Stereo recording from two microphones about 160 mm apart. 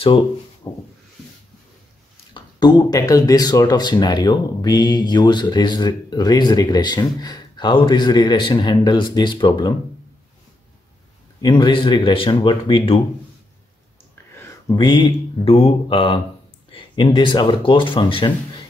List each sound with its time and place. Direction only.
0.6 s snake: 20° left (ahead or behind)
2.3 s speech: 25° left (ahead or behind)
11.4 s speech: 30° left (ahead or behind)
14.3 s a sound: 15° left (ahead or behind)
14.8 s speech: 30° left (ahead or behind)